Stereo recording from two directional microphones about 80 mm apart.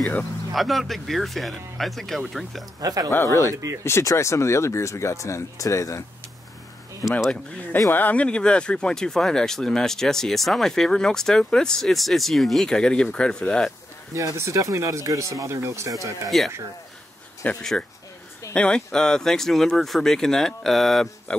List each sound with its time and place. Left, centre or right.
0.5 s speech: centre
2.8 s speech: right
3.3 s speech: left
7.2 s speech: centre
14.1 s speech: right
16.3 s speech: centre